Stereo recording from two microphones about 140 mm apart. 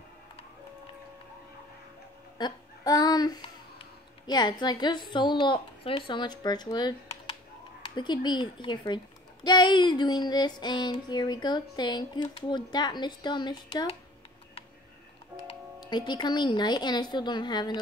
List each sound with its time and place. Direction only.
2.3 s a sound: 30° left (ahead or behind)
4.3 s a child's voice: 30° left (ahead or behind)
15.4 s speech: 30° left (ahead or behind)